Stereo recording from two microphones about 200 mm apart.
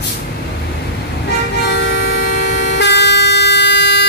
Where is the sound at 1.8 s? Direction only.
60° left (ahead or behind).